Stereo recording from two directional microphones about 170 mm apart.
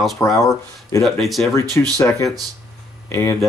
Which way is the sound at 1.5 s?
15° left (ahead or behind).